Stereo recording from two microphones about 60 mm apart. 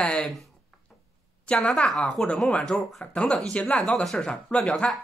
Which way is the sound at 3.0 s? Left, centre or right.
Centre.